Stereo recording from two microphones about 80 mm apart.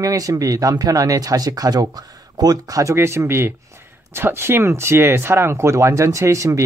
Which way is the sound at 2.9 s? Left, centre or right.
Right.